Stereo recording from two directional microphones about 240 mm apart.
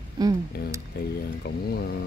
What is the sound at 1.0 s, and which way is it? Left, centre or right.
Speech, left.